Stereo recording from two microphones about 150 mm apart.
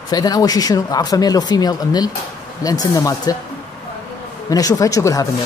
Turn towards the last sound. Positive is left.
turn(degrees=20)  # may be behind; listen again after turning